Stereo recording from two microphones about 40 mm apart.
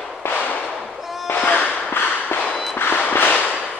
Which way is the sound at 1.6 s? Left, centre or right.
Left.